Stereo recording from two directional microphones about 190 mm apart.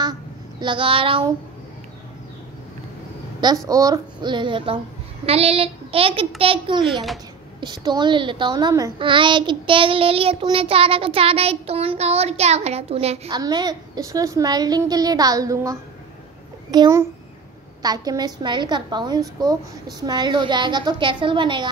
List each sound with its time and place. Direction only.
0.0 s a sound: 20° right (ahead or behind)
3.3 s a child's voice: 20° right (ahead or behind)
6.9 s a child's voice: centre (ahead or behind)
7.6 s a child's voice: 20° right (ahead or behind)
13.3 s a child's voice: 20° right (ahead or behind)